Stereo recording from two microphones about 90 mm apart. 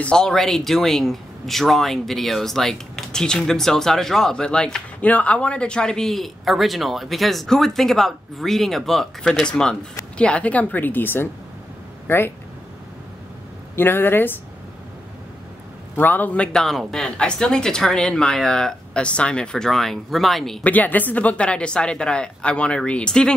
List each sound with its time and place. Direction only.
0.0 s a woman's voice: 10° left (ahead or behind); by 12.2 s 25° left (ahead or behind)
13.7 s a woman's voice: 25° left (ahead or behind)
16.0 s a woman's voice: 20° left (ahead or behind)
16.5 s speech: 5° left (ahead or behind)
20.6 s speech: 20° left (ahead or behind)